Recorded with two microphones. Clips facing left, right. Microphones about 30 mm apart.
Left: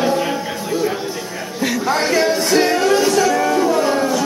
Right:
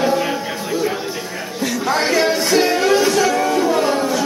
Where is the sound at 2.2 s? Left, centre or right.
Centre.